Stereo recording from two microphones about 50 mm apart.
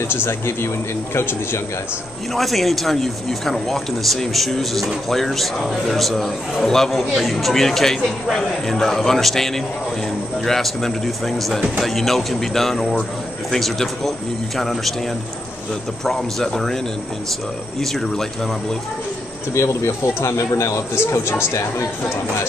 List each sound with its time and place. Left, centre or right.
0.1 s speech: left
2.3 s speech: centre
16.0 s a man's voice: centre
17.7 s speech: centre
19.5 s speech: left
20.9 s speech: left